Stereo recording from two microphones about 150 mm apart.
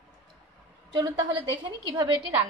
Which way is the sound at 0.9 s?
30° right (ahead or behind).